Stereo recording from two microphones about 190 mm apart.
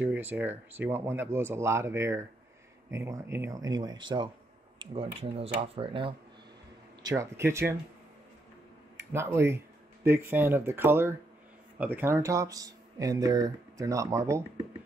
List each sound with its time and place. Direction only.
0.0 s speech: 10° right (ahead or behind)
8.9 s speech: 15° right (ahead or behind)